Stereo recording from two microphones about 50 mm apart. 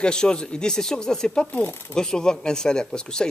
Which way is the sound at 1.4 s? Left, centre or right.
Left.